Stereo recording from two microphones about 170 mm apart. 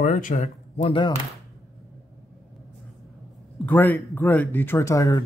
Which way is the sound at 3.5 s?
10° left (ahead or behind).